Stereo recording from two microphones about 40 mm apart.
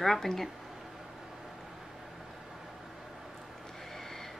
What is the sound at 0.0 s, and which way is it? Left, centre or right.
Speech, centre.